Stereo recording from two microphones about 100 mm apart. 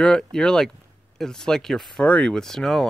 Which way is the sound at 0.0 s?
10° left (ahead or behind).